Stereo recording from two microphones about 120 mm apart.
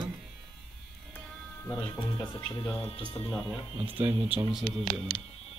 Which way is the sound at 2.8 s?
45° left (ahead or behind).